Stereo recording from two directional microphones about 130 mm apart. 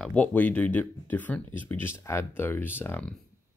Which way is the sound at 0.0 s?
10° left (ahead or behind).